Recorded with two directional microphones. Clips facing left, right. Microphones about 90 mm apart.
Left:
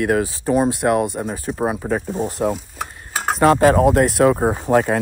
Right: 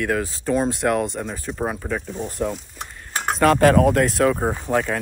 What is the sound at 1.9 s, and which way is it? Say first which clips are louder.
Speech: left 5 dB; 45° left (ahead or behind).